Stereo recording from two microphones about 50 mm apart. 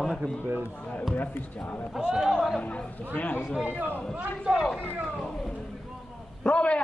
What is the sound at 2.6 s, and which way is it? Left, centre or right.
Speech, left.